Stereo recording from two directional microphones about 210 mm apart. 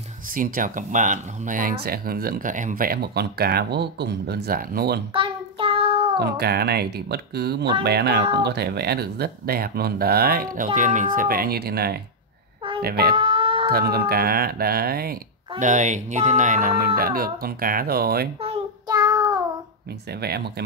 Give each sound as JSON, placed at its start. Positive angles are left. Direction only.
{"t": 0.3, "sound": "speech", "side_deg": -40}
{"t": 5.1, "sound": "child singing", "side_deg": -25}
{"t": 6.1, "sound": "speech", "side_deg": -50}
{"t": 13.1, "sound": "a sound", "side_deg": -25}
{"t": 13.7, "sound": "speech", "side_deg": -45}
{"t": 15.6, "sound": "speech", "side_deg": -35}
{"t": 18.4, "sound": "child singing", "side_deg": -20}
{"t": 20.1, "sound": "speech", "side_deg": -50}